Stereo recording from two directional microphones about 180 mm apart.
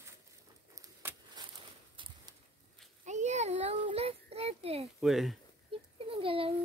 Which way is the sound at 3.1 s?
40° right (ahead or behind).